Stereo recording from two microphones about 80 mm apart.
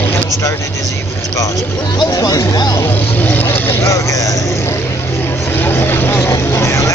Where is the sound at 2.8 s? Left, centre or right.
Left.